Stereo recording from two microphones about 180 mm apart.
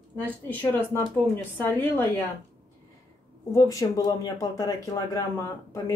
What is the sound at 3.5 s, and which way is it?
Speech, 20° left (ahead or behind).